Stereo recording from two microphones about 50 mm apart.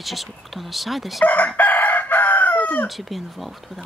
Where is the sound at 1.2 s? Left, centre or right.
Left.